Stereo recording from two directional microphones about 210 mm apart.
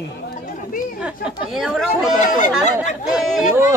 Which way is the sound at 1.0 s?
5° right (ahead or behind).